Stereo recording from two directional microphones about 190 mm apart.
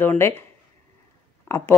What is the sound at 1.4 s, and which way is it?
Speech, 15° left (ahead or behind).